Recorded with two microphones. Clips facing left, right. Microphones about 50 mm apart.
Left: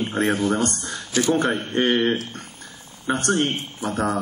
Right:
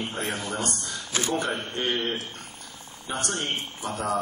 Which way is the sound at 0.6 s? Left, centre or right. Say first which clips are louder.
Left 6 dB; left.